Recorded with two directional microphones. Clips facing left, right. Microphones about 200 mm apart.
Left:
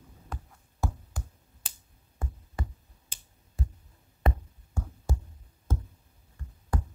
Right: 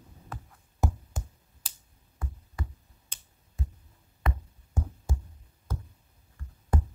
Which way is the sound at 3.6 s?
35° left (ahead or behind).